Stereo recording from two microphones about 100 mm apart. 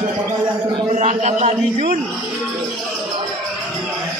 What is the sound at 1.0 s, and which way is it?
Speech, 90° right.